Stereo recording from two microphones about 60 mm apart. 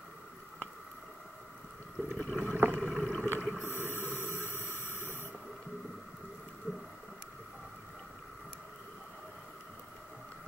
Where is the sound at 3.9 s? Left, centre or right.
Left.